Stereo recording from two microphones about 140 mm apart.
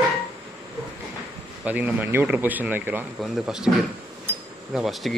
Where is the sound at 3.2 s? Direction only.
5° right (ahead or behind).